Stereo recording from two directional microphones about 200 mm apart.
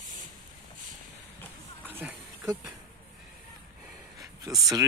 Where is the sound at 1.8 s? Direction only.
10° right (ahead or behind).